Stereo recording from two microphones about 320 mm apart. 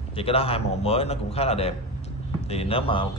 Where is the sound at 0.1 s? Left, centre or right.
Centre.